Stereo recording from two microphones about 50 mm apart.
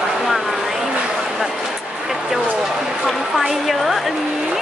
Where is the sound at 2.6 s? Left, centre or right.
Centre.